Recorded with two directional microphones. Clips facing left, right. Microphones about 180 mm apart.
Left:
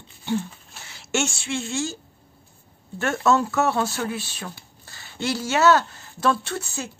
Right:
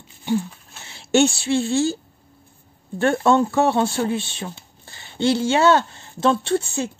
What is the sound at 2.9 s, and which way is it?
Speech, 30° right (ahead or behind).